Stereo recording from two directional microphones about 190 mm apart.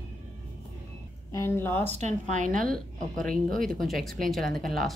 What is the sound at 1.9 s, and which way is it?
A woman's voice, 35° right (ahead or behind).